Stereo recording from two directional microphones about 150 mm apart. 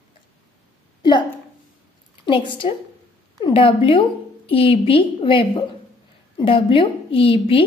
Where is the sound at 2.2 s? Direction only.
35° left (ahead or behind).